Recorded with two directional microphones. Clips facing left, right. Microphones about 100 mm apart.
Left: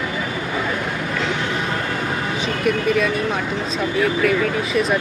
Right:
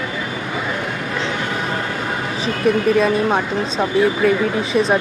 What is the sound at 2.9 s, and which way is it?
Speech, 35° right (ahead or behind).